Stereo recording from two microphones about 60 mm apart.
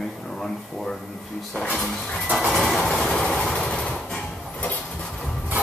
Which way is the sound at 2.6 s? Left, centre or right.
Centre.